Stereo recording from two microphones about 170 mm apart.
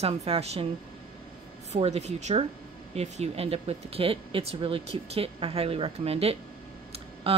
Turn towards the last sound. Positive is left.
turn(degrees=-35)  # may be behind; listen again after turning